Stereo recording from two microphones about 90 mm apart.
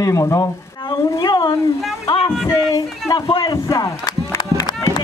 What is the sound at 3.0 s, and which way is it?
Speech, 40° left (ahead or behind).